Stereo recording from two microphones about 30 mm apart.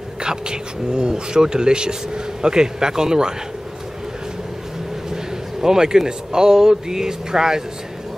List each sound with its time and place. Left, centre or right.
0.2 s speech: right
5.1 s a man's voice: centre